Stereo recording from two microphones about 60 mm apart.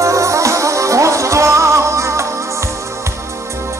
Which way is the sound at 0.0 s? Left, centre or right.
Right.